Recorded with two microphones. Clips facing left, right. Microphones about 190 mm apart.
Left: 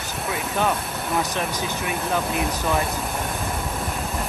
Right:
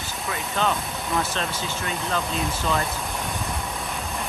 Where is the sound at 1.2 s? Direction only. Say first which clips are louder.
Left 2 dB; 15° left (ahead or behind).